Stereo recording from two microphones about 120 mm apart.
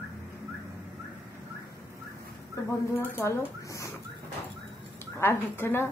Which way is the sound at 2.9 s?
25° left (ahead or behind).